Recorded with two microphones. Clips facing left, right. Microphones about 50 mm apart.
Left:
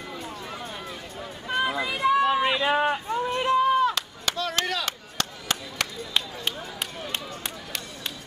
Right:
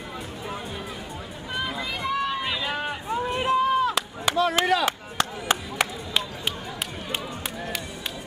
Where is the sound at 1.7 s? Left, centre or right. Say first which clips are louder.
Left 6 dB; centre.